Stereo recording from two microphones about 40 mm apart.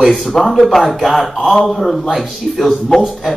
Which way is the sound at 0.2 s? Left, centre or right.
Centre.